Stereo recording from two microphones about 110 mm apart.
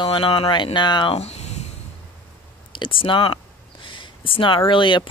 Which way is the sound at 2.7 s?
50° left (ahead or behind).